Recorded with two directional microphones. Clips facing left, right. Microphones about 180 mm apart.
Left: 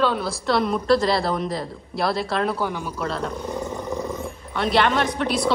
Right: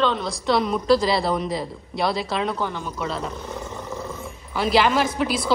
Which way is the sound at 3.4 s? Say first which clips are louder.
Left 4 dB; 15° left (ahead or behind).